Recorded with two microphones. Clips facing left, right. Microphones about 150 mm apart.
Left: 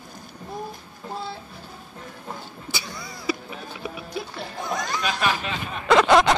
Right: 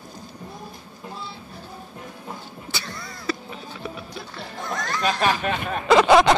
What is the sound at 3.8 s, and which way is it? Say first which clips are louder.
Music: left 4 dB; 10° left (ahead or behind).